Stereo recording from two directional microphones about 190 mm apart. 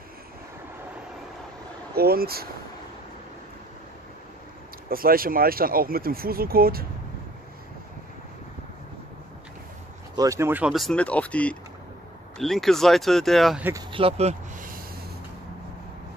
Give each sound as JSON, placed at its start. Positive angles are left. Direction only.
{"t": 2.0, "sound": "speech", "side_deg": -55}
{"t": 4.8, "sound": "speech", "side_deg": -50}
{"t": 10.1, "sound": "speech", "side_deg": -15}
{"t": 13.7, "sound": "speech", "side_deg": -30}